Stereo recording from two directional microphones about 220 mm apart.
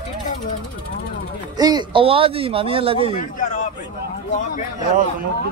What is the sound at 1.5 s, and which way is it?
Speech, 20° right (ahead or behind).